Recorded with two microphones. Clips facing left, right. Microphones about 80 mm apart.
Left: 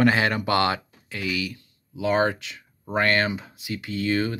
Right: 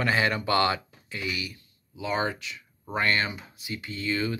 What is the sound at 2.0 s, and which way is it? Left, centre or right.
Speech, left.